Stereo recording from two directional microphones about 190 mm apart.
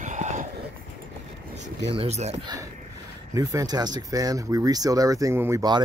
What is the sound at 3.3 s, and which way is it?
Speech, 20° right (ahead or behind).